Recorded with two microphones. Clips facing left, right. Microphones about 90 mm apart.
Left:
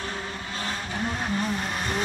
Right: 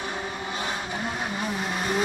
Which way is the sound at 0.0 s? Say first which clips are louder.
Right 2 dB; 15° right (ahead or behind).